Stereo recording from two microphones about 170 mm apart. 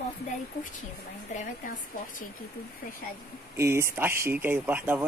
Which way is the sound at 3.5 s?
15° right (ahead or behind).